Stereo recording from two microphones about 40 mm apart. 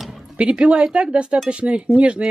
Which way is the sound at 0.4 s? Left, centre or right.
Right.